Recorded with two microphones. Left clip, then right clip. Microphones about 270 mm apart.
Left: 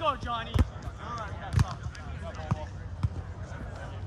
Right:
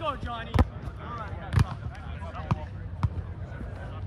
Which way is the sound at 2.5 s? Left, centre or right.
Right.